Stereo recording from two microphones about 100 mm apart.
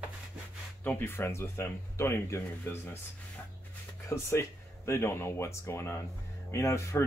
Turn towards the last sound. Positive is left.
turn(degrees=30)  # may be behind; listen again after turning